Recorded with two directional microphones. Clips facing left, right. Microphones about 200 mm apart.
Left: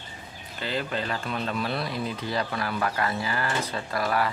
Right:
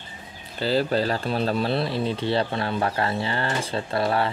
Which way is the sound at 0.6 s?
35° right (ahead or behind).